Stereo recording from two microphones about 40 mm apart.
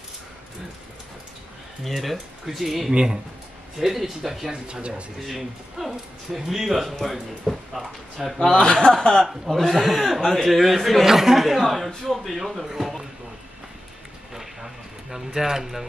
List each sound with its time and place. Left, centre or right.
1.9 s speech: centre
2.9 s speech: right
3.8 s speech: centre
4.5 s speech: right
5.2 s speech: centre
8.4 s a man's voice: centre
9.2 s speech: centre
14.3 s a sound: centre